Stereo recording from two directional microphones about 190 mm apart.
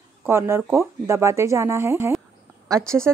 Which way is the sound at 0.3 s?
15° right (ahead or behind).